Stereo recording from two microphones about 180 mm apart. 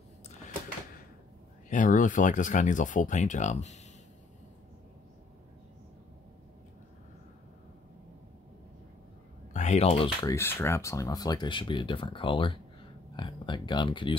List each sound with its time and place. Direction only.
1.7 s speech: 45° left (ahead or behind)
9.5 s a sound: 40° left (ahead or behind)
10.2 s speech: 15° left (ahead or behind)